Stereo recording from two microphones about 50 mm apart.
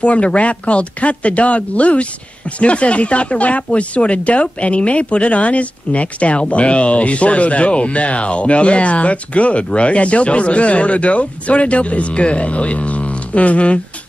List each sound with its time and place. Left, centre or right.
0.0 s speech: left